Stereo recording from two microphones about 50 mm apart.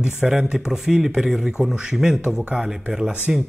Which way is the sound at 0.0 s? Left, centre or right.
Centre.